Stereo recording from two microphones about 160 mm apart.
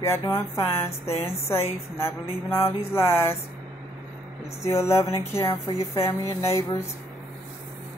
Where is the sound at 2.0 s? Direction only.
15° left (ahead or behind).